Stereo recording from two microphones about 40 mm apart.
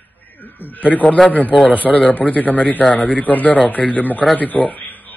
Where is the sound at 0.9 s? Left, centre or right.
Left.